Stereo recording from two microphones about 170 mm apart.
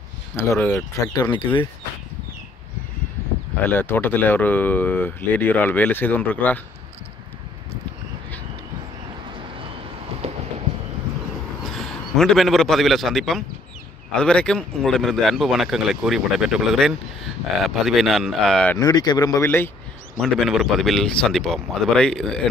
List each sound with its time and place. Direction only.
0.4 s speech: 15° left (ahead or behind)
1.1 s speech: 25° left (ahead or behind)
3.7 s speech: 10° left (ahead or behind)
10.2 s clip-clop: 35° right (ahead or behind)
11.6 s a man's voice: centre (ahead or behind)
18.8 s speech: 20° left (ahead or behind)
20.2 s speech: centre (ahead or behind)